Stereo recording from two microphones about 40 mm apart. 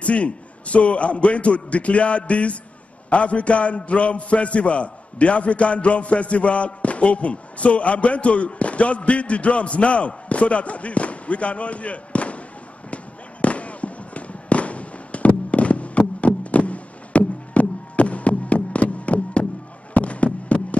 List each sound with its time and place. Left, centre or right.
0.0 s a man's voice: left
12.9 s fireworks: left
19.9 s a sound: left